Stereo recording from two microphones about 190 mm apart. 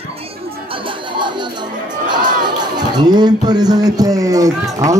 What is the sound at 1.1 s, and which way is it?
Music, 25° right (ahead or behind).